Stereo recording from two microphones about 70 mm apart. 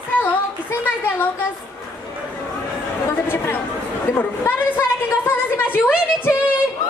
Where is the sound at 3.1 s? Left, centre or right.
Left.